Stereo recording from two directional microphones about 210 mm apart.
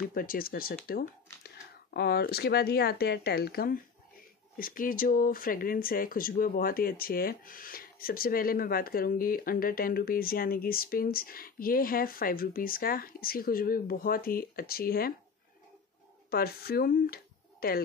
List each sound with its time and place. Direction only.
0.1 s speech: 45° left (ahead or behind)
16.3 s speech: 45° left (ahead or behind)